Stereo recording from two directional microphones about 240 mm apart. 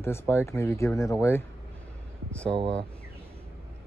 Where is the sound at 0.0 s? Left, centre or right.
Centre.